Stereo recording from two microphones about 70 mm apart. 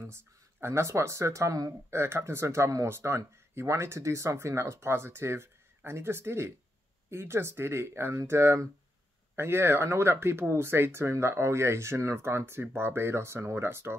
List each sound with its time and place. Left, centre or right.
0.0 s speech: right
1.9 s speech: right